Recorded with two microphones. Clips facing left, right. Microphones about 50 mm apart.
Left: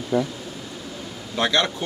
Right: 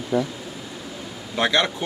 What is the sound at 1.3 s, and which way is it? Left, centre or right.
Speech, centre.